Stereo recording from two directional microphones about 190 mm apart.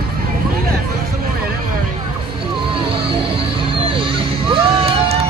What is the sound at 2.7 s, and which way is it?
Music, 30° right (ahead or behind).